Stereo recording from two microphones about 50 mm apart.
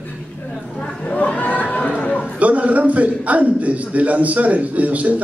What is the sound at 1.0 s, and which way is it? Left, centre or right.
Chatter, left.